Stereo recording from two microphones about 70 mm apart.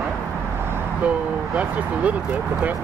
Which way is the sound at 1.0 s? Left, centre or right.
Right.